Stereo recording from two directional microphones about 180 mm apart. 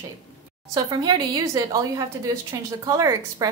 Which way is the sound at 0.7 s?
20° right (ahead or behind).